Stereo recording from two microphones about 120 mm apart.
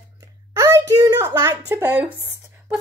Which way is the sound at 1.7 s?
15° right (ahead or behind).